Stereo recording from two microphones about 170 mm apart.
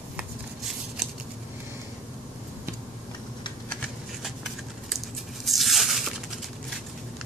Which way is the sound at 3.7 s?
5° left (ahead or behind).